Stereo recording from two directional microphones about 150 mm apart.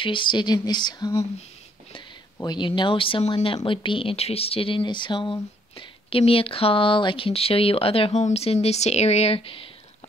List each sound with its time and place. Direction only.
0.0 s speech: 35° left (ahead or behind)
2.3 s speech: 30° left (ahead or behind)